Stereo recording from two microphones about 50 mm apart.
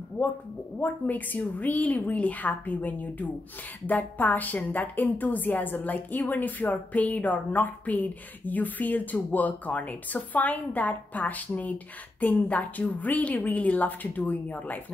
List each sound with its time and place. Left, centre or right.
0.2 s a woman's voice: left